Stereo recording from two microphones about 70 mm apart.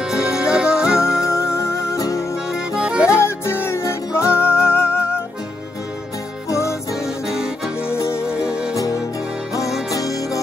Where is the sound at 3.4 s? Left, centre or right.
Left.